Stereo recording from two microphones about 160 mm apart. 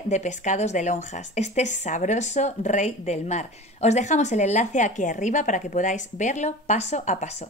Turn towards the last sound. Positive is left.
turn(degrees=45)  # may be behind; listen again after turning